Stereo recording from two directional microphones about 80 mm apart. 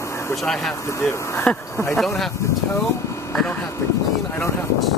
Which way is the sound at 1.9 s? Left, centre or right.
Centre.